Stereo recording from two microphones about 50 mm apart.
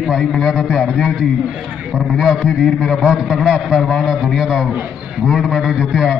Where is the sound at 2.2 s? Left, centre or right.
Centre.